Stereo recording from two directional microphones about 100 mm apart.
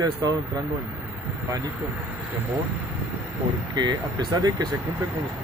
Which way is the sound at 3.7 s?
50° right (ahead or behind).